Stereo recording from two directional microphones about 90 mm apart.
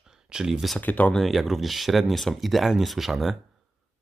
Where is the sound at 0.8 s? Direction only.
20° left (ahead or behind).